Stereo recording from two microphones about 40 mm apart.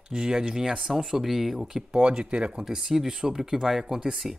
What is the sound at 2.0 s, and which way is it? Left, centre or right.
Speech, right.